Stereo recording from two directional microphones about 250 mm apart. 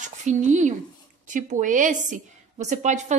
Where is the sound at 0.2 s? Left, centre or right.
Right.